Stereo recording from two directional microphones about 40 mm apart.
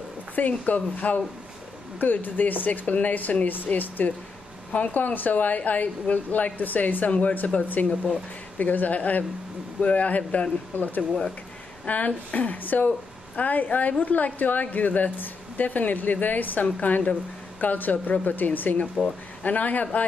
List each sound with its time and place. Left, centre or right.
0.4 s a woman's voice: left
7.1 s a woman's voice: left
10.4 s a woman's voice: left